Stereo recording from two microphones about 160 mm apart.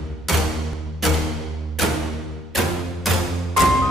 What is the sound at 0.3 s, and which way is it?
Music, centre (ahead or behind).